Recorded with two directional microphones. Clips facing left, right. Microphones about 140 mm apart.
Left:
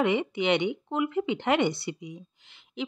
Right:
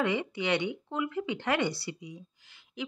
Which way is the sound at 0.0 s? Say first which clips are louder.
Left 4 dB; 20° left (ahead or behind).